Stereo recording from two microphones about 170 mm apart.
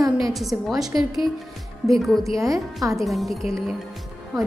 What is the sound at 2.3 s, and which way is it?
Speech, 20° right (ahead or behind).